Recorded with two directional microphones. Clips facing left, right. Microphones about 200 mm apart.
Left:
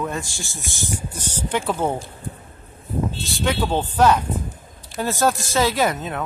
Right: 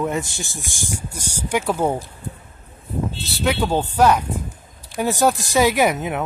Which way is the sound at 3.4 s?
10° right (ahead or behind).